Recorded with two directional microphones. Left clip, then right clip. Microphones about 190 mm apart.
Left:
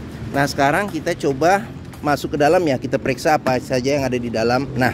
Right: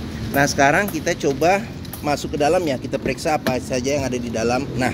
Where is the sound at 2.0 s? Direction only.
40° left (ahead or behind).